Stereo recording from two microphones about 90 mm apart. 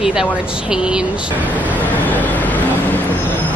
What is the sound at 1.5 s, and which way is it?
Vehicle, 20° left (ahead or behind).